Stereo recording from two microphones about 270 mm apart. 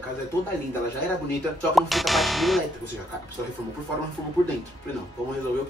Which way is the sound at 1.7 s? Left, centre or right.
Centre.